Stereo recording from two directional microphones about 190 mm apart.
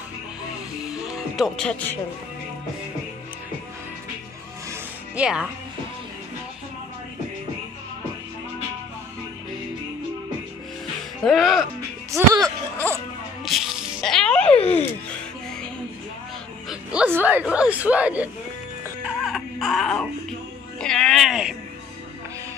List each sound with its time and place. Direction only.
0.8 s music: 5° right (ahead or behind)
4.6 s music: 5° right (ahead or behind)
11.2 s speech: centre (ahead or behind)
12.1 s music: 15° right (ahead or behind)
13.5 s music: centre (ahead or behind)
14.6 s music: 30° left (ahead or behind)
16.6 s speech: 5° right (ahead or behind)
19.0 s baby cry: centre (ahead or behind)
20.8 s a sound: centre (ahead or behind)